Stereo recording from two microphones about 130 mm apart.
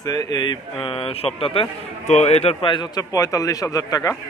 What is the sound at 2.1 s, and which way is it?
Speech, 55° left (ahead or behind).